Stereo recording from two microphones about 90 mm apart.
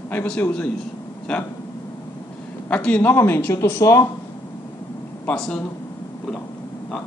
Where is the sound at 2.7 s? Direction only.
15° left (ahead or behind).